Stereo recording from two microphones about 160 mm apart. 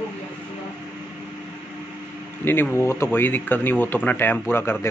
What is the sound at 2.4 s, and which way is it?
A man's voice, 15° left (ahead or behind).